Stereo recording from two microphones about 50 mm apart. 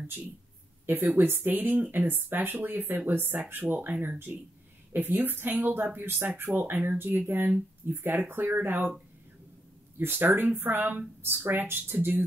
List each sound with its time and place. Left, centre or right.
0.8 s speech: right
3.6 s speech: right
9.9 s speech: right